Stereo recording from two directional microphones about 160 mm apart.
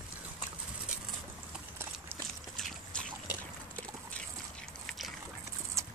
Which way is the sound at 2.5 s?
5° left (ahead or behind).